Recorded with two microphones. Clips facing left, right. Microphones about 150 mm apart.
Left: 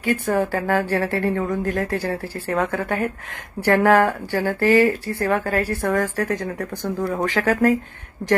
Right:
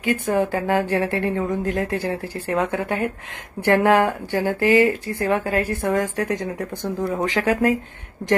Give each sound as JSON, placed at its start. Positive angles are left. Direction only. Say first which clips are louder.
{"t": 0.0, "sound": "speech", "louder": "even", "side_deg": -20}